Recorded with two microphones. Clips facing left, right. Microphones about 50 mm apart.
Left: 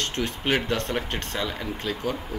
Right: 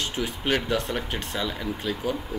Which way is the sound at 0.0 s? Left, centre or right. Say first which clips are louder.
Left 1 dB; centre.